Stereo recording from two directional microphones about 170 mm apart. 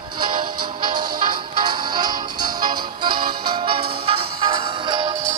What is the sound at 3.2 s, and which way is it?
Music, 60° right (ahead or behind).